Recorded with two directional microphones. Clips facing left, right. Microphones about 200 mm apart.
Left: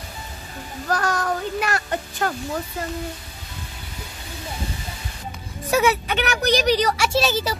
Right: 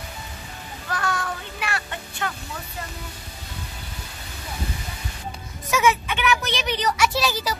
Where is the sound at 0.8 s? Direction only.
40° left (ahead or behind).